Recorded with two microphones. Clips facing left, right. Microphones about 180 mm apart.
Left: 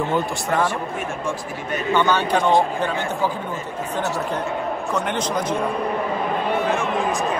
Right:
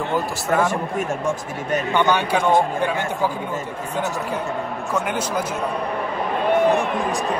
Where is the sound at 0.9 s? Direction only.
40° right (ahead or behind).